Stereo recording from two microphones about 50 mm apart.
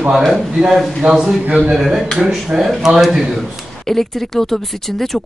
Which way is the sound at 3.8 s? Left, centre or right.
Centre.